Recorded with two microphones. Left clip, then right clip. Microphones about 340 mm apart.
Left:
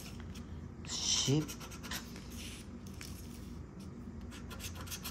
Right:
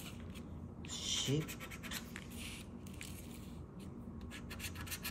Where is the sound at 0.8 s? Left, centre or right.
Centre.